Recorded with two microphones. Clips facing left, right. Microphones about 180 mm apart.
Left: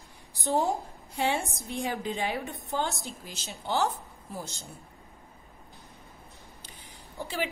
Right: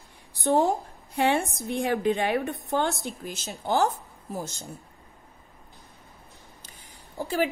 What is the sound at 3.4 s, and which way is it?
A woman's voice, 45° right (ahead or behind).